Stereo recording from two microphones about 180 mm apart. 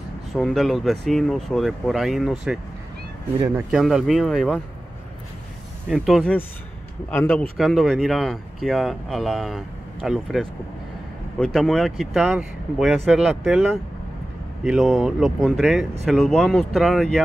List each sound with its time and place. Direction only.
0.3 s speech: centre (ahead or behind)
3.3 s speech: 15° right (ahead or behind)
3.7 s speech: centre (ahead or behind)
5.9 s speech: centre (ahead or behind)